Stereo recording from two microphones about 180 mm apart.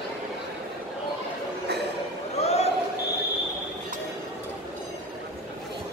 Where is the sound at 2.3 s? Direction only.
35° left (ahead or behind).